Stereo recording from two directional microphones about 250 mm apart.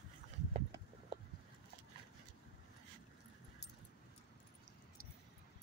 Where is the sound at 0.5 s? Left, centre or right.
Right.